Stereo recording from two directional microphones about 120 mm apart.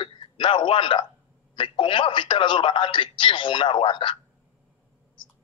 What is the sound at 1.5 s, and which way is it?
A man's voice, 45° left (ahead or behind).